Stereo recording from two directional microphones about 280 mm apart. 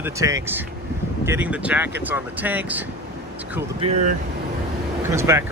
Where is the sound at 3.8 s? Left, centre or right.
Right.